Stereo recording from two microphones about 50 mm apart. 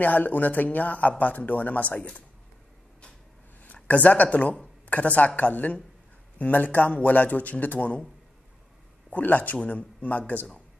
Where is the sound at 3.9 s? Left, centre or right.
Left.